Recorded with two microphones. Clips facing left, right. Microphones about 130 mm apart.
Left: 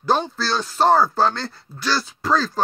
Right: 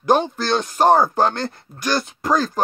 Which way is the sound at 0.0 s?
15° right (ahead or behind).